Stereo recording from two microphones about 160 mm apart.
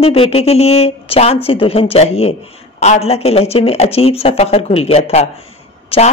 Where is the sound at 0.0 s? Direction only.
35° left (ahead or behind).